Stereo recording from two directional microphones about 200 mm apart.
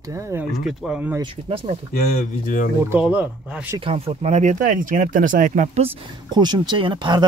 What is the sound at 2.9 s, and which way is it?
Speech, 10° right (ahead or behind).